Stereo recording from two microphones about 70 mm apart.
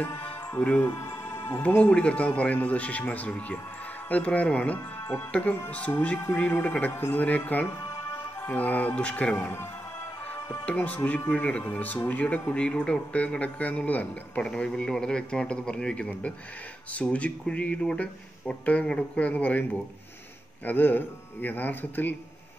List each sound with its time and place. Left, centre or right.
0.7 s music: left
1.8 s a man's voice: centre